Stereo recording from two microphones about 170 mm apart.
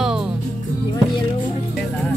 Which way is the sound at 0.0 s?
5° right (ahead or behind).